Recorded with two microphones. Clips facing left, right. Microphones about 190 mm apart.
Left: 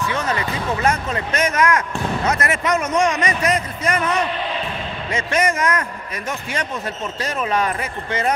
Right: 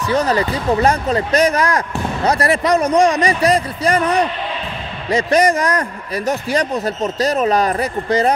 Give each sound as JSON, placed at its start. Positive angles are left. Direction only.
{"t": 0.1, "sound": "a man's voice", "side_deg": -35}